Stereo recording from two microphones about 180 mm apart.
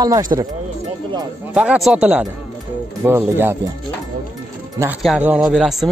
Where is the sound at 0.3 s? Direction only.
25° right (ahead or behind).